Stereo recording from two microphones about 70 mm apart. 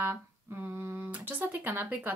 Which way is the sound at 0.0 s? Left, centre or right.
Right.